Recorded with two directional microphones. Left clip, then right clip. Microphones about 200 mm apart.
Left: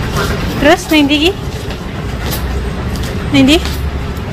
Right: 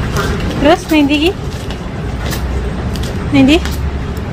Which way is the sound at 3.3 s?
5° right (ahead or behind).